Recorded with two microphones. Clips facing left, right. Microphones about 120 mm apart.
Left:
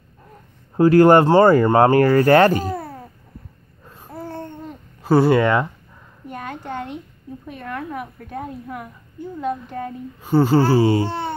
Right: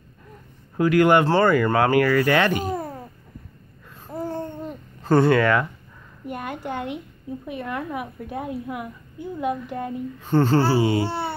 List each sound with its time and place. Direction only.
0.7 s speech: 35° left (ahead or behind)
1.2 s speech: 20° left (ahead or behind)
1.5 s speech: 35° left (ahead or behind)
2.7 s babbling: 15° right (ahead or behind)
5.0 s speech: 5° left (ahead or behind)
5.3 s speech: 25° left (ahead or behind)
6.2 s a woman's voice: 10° right (ahead or behind)
10.2 s a child's voice: 10° left (ahead or behind)
10.8 s speech: 30° left (ahead or behind)
11.1 s speech: 5° right (ahead or behind)